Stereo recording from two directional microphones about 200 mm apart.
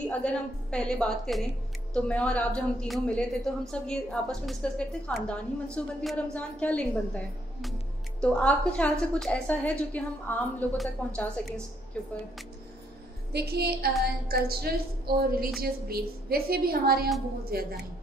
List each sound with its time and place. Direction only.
0.0 s a woman's voice: 5° left (ahead or behind)
13.3 s a woman's voice: 55° right (ahead or behind)